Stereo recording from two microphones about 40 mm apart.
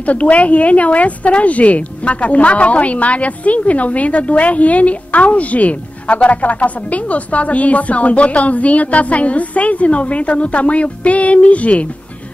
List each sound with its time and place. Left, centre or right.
0.0 s a woman's voice: left